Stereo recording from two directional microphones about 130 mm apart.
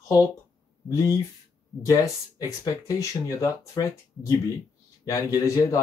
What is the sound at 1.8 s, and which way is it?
Speech, 25° left (ahead or behind).